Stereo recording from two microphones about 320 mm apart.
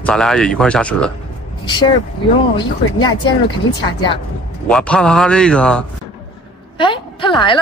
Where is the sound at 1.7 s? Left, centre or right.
Centre.